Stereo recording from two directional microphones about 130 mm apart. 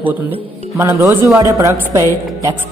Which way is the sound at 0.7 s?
20° right (ahead or behind).